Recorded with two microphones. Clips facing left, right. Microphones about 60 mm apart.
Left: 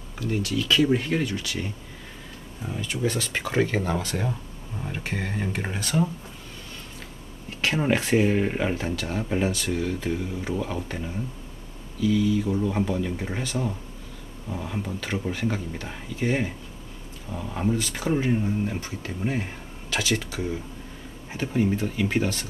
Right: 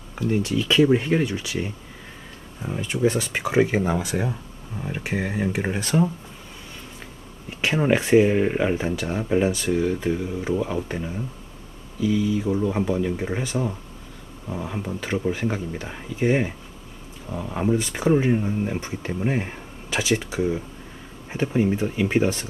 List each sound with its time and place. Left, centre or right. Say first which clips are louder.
0.2 s speech: right 4 dB; centre
7.4 s speech: right 3 dB; centre